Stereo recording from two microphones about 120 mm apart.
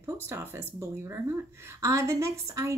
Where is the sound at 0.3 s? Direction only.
20° right (ahead or behind).